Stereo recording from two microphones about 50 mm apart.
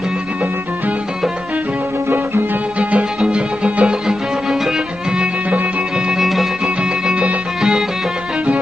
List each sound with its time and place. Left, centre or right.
2.8 s music: right
6.2 s music: centre
6.8 s music: right